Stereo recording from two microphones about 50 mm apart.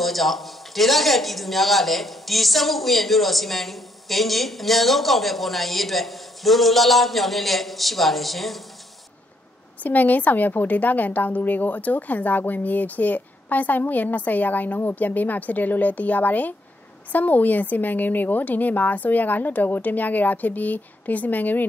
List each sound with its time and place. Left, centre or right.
0.0 s a man's voice: centre
9.8 s a woman's voice: left